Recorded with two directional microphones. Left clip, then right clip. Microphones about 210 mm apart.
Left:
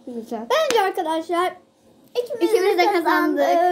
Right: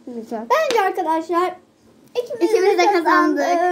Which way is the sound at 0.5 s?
20° left (ahead or behind).